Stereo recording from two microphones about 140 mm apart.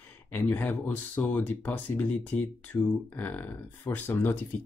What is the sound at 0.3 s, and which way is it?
Speech, 15° left (ahead or behind).